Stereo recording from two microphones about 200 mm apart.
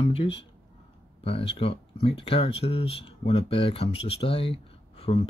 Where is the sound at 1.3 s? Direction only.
30° left (ahead or behind).